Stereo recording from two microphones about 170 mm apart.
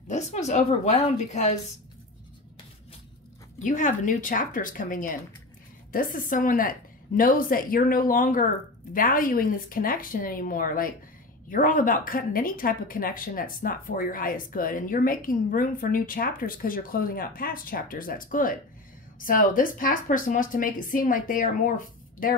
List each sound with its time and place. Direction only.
0.1 s a woman's voice: 40° left (ahead or behind)
3.6 s a woman's voice: 50° left (ahead or behind)